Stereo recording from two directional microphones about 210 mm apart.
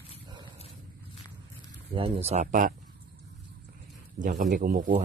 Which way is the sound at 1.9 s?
25° right (ahead or behind).